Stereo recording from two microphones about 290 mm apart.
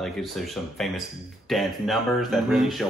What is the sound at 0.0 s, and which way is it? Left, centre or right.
A man's voice, centre.